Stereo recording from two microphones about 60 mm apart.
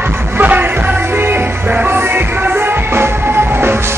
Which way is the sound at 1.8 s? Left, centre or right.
Right.